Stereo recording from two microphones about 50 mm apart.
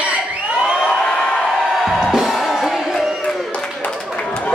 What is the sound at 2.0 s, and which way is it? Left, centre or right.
Music, centre.